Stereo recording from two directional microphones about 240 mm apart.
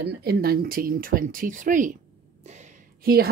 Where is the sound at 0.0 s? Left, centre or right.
Right.